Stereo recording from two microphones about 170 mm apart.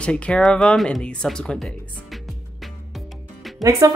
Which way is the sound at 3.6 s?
20° right (ahead or behind).